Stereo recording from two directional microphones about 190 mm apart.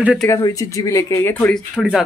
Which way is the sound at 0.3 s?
20° left (ahead or behind).